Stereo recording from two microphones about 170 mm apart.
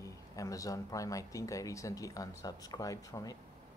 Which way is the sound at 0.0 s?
20° left (ahead or behind).